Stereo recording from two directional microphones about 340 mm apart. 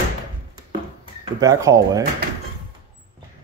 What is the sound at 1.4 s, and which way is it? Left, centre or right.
Speech, centre.